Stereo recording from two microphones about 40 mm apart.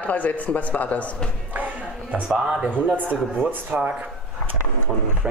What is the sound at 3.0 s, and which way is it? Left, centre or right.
Speech, right.